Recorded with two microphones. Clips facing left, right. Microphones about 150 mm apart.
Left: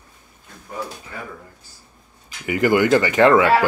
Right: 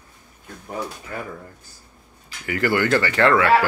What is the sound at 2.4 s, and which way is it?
Speech, 15° left (ahead or behind).